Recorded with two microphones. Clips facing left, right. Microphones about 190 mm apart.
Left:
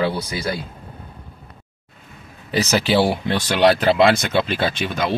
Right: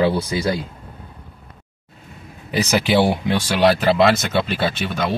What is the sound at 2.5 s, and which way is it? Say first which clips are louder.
Speech: even; 10° right (ahead or behind).